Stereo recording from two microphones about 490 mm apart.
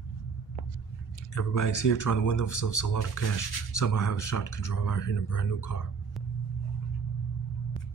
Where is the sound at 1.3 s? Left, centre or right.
Left.